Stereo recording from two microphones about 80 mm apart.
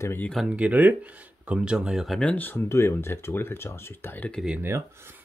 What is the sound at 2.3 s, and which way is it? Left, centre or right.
Speech, left.